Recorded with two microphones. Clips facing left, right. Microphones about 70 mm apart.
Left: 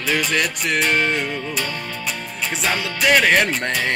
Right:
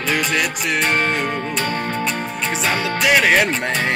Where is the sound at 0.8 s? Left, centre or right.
Right.